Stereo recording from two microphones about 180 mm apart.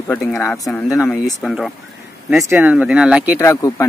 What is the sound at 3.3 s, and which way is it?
Speech, 15° left (ahead or behind).